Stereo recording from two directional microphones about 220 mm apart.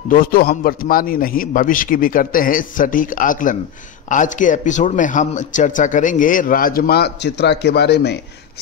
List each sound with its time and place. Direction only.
0.1 s speech: 40° left (ahead or behind)